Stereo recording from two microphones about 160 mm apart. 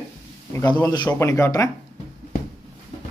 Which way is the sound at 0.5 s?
15° left (ahead or behind).